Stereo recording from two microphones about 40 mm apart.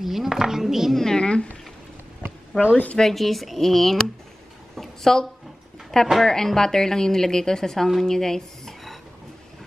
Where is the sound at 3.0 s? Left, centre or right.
Centre.